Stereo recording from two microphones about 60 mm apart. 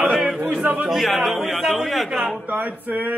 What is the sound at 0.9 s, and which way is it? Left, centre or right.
Speech, centre.